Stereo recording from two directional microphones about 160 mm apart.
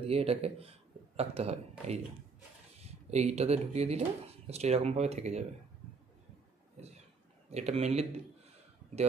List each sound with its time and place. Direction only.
0.0 s speech: 40° right (ahead or behind)
7.5 s speech: 40° right (ahead or behind)